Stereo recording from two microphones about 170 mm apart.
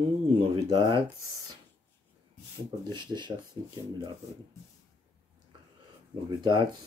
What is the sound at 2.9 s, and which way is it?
Speech, 25° right (ahead or behind).